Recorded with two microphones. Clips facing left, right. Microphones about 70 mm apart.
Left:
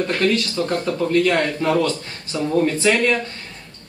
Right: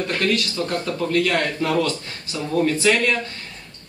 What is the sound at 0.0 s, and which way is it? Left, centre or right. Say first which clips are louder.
A man's voice: left 3 dB; left.